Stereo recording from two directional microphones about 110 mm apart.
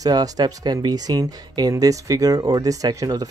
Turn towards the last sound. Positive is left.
turn(degrees=-35)  # may be behind; listen again after turning